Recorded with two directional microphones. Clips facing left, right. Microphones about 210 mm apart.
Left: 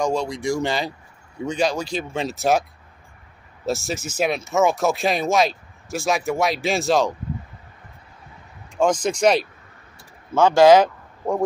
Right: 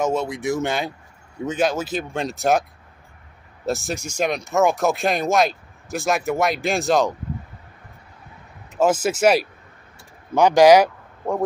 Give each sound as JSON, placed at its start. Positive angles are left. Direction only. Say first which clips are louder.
{"t": 0.0, "sound": "speech", "louder": "even", "side_deg": -5}
{"t": 3.6, "sound": "speech", "louder": "even", "side_deg": 0}
{"t": 8.7, "sound": "speech", "louder": "right 1 dB", "side_deg": -5}